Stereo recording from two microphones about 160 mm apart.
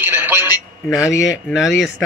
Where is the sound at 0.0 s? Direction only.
10° right (ahead or behind).